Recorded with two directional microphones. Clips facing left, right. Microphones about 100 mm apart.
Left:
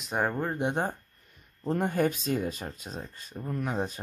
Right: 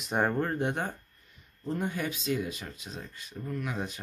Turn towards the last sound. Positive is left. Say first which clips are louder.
# left 3 dB
turn(degrees=35)  # may be behind; listen again after turning